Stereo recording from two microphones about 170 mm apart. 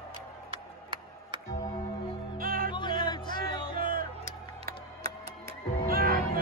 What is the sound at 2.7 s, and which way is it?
Music, 25° left (ahead or behind).